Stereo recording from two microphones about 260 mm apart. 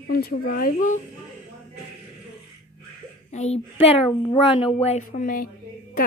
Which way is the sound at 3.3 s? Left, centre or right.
Left.